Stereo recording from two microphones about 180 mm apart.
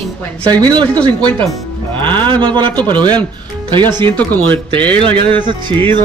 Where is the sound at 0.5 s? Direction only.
20° right (ahead or behind).